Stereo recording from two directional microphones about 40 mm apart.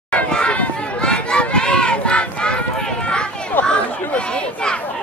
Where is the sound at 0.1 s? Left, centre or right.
Left.